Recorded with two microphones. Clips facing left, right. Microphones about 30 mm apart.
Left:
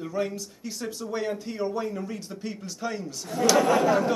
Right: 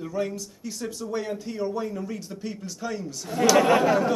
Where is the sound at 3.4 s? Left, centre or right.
Right.